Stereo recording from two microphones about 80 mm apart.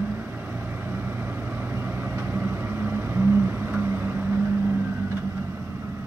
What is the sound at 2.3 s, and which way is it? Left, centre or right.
Vehicle, right.